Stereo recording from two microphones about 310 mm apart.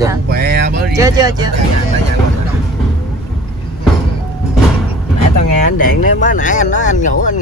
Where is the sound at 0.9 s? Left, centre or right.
Centre.